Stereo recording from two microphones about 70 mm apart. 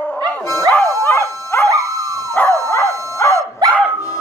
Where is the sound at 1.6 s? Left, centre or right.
Right.